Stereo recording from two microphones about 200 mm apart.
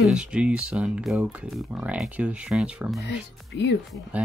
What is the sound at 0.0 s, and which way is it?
Speech, 5° right (ahead or behind).